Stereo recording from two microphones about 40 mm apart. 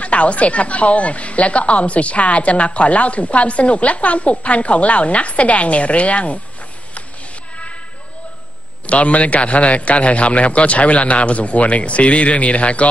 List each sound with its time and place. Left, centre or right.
0.0 s a woman's voice: left
8.8 s a woman's voice: left